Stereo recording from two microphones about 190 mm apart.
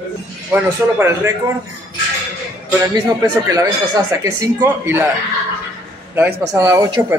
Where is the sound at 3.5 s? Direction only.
20° right (ahead or behind).